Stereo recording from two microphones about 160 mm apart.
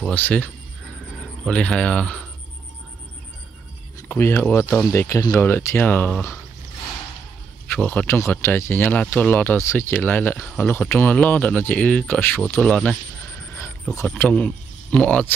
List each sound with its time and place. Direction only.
0.0 s speech: 10° left (ahead or behind)
4.1 s speech: 15° left (ahead or behind)
7.7 s speech: 10° left (ahead or behind)
13.9 s speech: 10° left (ahead or behind)